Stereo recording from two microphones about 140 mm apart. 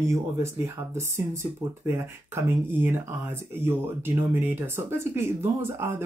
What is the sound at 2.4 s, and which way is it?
Speech, 15° right (ahead or behind).